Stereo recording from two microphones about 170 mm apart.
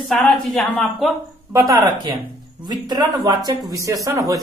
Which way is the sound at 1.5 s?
20° right (ahead or behind).